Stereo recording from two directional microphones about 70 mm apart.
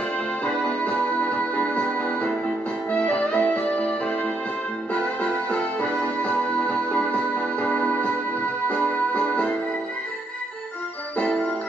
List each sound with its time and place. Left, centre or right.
0.7 s music: left
4.9 s music: centre